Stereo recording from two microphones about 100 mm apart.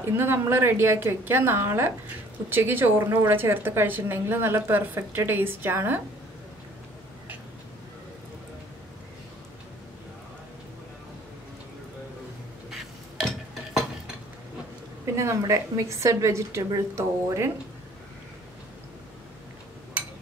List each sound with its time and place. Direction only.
0.0 s a woman's voice: 25° right (ahead or behind)
15.1 s a woman's voice: 30° right (ahead or behind)